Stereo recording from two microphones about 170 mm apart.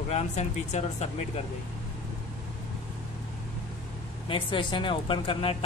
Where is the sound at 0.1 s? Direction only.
40° left (ahead or behind).